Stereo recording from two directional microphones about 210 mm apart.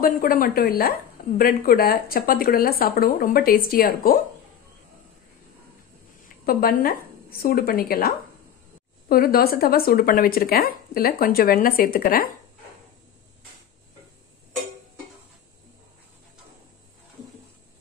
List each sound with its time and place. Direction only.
0.0 s speech: 45° left (ahead or behind)
6.2 s speech: 45° left (ahead or behind)
9.1 s speech: 45° left (ahead or behind)